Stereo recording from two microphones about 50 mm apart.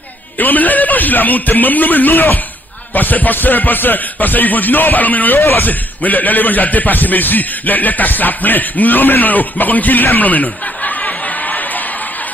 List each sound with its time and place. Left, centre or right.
0.4 s speech: left